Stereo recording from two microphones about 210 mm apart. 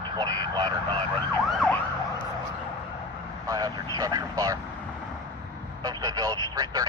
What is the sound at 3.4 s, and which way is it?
Speech, 15° right (ahead or behind).